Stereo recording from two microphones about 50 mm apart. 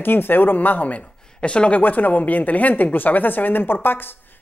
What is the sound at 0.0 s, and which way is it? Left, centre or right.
A woman's voice, left.